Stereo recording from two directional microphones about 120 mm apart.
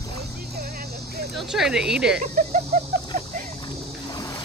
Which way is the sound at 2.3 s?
75° right (ahead or behind).